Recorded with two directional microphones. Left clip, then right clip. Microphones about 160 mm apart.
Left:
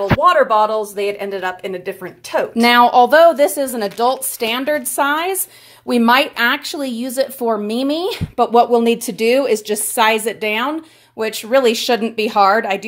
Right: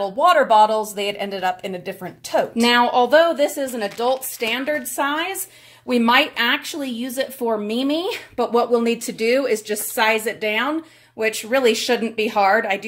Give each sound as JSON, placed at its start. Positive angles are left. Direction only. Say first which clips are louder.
{"t": 0.2, "sound": "speech", "louder": "even", "side_deg": 0}
{"t": 2.6, "sound": "speech", "louder": "left 7 dB", "side_deg": 40}